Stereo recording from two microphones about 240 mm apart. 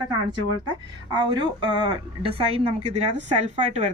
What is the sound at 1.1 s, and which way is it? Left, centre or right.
A woman's voice, centre.